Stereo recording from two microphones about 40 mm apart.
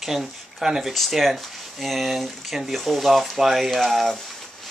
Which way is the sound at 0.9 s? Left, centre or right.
Centre.